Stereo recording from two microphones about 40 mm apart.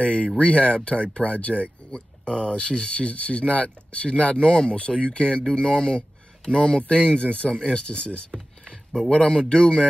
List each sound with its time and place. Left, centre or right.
0.0 s speech: left
1.9 s a sound: centre
2.3 s speech: left
9.3 s speech: left